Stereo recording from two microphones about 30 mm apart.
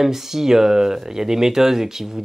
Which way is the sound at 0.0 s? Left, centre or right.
Centre.